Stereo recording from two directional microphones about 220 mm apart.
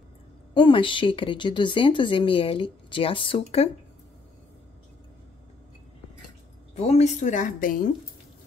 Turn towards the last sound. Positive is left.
turn(degrees=40)  # may be behind; listen again after turning